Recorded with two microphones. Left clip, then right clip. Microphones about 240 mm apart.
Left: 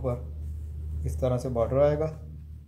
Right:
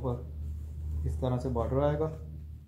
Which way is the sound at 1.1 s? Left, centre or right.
Left.